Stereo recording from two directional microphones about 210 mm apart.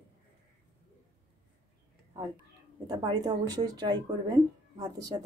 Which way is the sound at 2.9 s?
20° right (ahead or behind).